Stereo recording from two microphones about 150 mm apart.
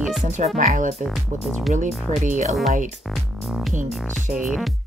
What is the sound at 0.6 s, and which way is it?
Speech, 55° right (ahead or behind).